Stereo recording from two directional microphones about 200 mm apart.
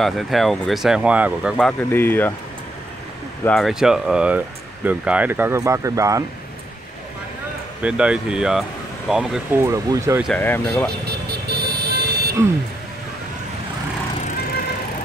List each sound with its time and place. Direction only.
0.0 s speech: centre (ahead or behind)
1.6 s speech: 10° left (ahead or behind)
3.4 s speech: centre (ahead or behind); by 6.2 s 15° right (ahead or behind)
7.8 s speech: 5° right (ahead or behind)
10.2 s speech: 10° left (ahead or behind)
11.1 s vehicle: 55° right (ahead or behind)